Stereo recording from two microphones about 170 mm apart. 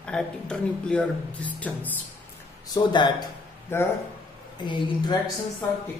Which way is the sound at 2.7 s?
25° left (ahead or behind).